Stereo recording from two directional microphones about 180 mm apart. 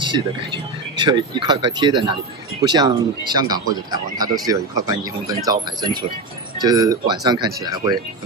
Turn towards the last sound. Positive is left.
turn(degrees=-20)  # may be behind; listen again after turning